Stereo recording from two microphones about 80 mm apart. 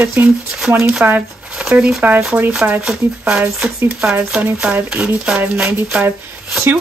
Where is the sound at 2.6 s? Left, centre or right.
Right.